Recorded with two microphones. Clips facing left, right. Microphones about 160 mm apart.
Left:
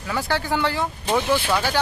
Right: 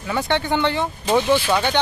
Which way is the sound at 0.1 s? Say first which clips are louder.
Right 3 dB; centre (ahead or behind).